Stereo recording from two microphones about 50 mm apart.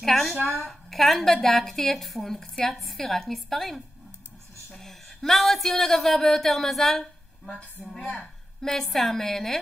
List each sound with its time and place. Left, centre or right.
0.0 s a woman's voice: centre
7.8 s a woman's voice: right
8.5 s a woman's voice: centre